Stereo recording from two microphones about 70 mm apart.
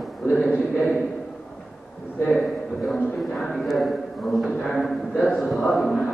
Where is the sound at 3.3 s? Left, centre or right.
Centre.